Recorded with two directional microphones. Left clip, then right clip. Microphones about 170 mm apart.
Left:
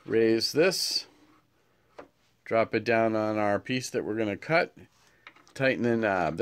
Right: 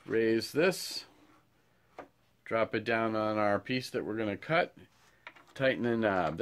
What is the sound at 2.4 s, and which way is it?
Speech, 55° left (ahead or behind).